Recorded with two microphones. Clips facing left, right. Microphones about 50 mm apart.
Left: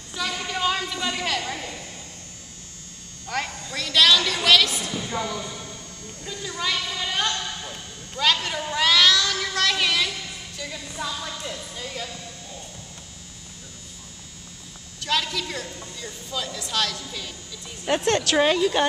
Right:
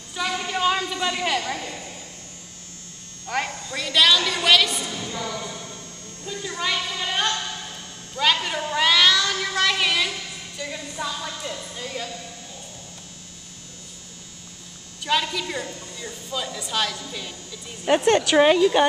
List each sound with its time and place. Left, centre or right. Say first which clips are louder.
0.1 s a sound: right 2 dB; centre
3.3 s a woman's voice: right 2 dB; centre
4.9 s a woman's voice: left 2 dB; centre
6.2 s a woman's voice: right 1 dB; centre
7.0 s music: right 1 dB; centre
8.2 s a woman's voice: right 1 dB; centre
8.6 s child singing: right 1 dB; centre
10.6 s a woman's voice: right 2 dB; centre
15.0 s a woman's voice: right 2 dB; centre